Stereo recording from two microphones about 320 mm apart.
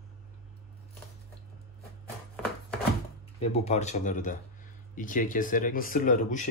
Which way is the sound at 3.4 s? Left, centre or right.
Centre.